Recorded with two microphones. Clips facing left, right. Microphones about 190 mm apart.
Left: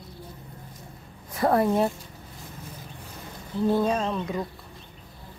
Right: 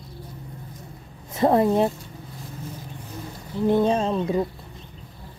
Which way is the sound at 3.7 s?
25° right (ahead or behind).